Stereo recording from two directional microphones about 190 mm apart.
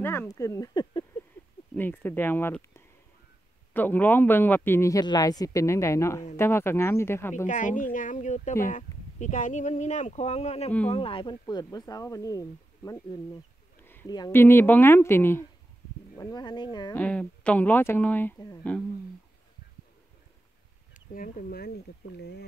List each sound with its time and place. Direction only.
0.0 s a man's voice: 10° left (ahead or behind)
7.4 s speech: 40° left (ahead or behind); by 13.2 s 20° left (ahead or behind)
13.7 s a sound: 10° left (ahead or behind)
14.1 s a man's voice: 15° left (ahead or behind)
16.9 s a man's voice: 5° left (ahead or behind)
21.1 s speech: 45° left (ahead or behind)